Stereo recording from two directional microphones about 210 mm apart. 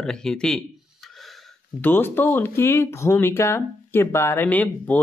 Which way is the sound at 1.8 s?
10° left (ahead or behind).